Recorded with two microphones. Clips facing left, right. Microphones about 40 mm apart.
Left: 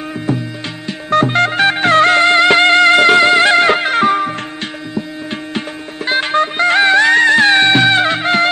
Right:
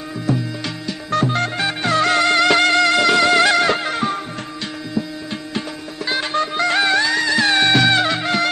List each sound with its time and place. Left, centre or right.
0.3 s music: left
0.8 s music: left
6.0 s music: left